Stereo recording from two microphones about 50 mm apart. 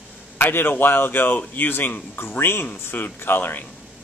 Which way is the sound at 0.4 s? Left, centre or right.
Left.